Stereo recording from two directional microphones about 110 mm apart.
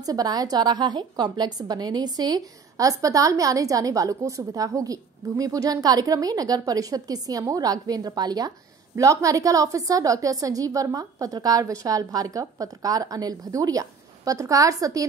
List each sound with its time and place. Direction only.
0.0 s a woman's voice: 35° right (ahead or behind)